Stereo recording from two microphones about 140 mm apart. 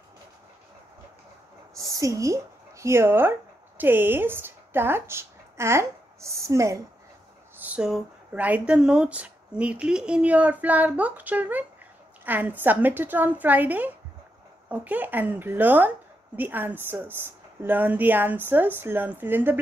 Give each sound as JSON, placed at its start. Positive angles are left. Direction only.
{"t": 1.8, "sound": "speech", "side_deg": -25}
{"t": 7.5, "sound": "speech", "side_deg": -10}